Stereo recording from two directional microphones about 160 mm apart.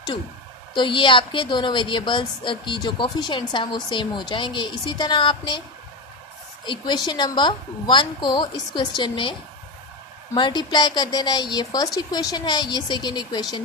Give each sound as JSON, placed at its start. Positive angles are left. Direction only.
{"t": 0.7, "sound": "a woman's voice", "side_deg": 30}
{"t": 6.6, "sound": "a woman's voice", "side_deg": 30}
{"t": 10.3, "sound": "a woman's voice", "side_deg": 25}